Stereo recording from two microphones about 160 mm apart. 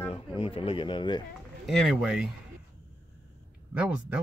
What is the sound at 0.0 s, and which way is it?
Speech, 35° left (ahead or behind).